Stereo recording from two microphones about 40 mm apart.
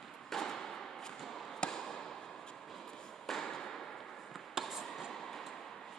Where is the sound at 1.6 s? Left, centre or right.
Centre.